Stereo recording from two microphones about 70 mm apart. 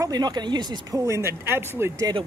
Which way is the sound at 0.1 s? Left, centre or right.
Right.